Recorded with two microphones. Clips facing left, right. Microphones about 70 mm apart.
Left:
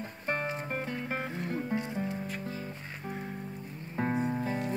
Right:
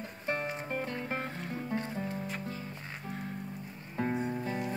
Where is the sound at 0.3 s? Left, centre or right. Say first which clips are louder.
Left 1 dB; left.